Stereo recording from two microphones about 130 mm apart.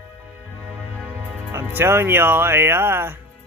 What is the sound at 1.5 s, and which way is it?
Speech, 20° right (ahead or behind).